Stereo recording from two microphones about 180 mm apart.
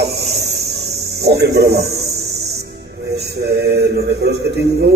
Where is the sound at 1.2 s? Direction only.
65° right (ahead or behind).